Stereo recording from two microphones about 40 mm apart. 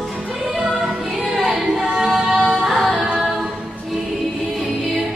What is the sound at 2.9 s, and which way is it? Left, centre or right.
A capella, centre.